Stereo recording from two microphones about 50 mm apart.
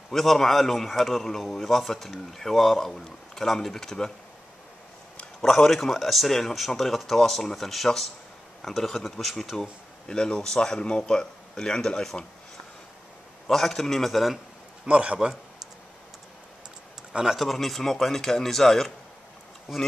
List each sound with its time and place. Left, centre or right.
0.1 s speech: centre
5.4 s speech: centre
13.5 s speech: centre
14.9 s a man's voice: right
17.1 s speech: centre
17.4 s speech: centre